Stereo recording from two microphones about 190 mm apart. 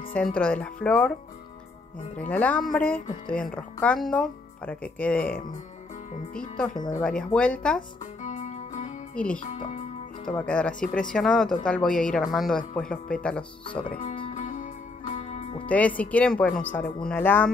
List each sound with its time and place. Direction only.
0.1 s speech: 5° left (ahead or behind)
2.1 s speech: 5° left (ahead or behind)
7.0 s speech: 5° left (ahead or behind)
8.2 s music: 40° left (ahead or behind)
9.1 s speech: 5° left (ahead or behind)
10.8 s speech: 45° left (ahead or behind)
11.1 s speech: 5° left (ahead or behind)
14.3 s music: 45° left (ahead or behind)
15.6 s speech: 5° left (ahead or behind)